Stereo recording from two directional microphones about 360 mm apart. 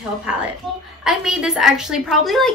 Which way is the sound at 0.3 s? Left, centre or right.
Centre.